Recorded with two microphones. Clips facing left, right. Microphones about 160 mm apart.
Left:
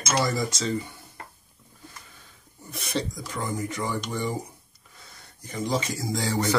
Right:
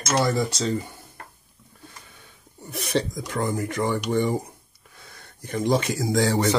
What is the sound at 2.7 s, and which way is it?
Speech, 65° right (ahead or behind).